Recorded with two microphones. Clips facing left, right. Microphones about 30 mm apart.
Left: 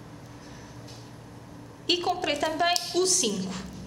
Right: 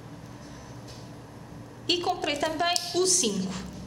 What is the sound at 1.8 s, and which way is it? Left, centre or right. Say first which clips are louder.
A woman's voice: left 1 dB; centre.